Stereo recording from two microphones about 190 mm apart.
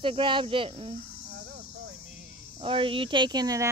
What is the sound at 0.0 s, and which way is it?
Speech, 25° right (ahead or behind).